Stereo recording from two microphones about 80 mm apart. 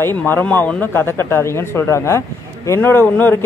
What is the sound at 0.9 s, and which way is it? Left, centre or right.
Speech, left.